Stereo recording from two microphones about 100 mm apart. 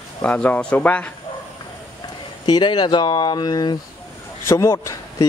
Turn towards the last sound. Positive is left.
turn(degrees=30)  # may be behind; listen again after turning